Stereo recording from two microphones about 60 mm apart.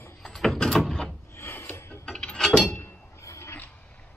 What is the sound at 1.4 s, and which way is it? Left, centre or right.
Filing, left.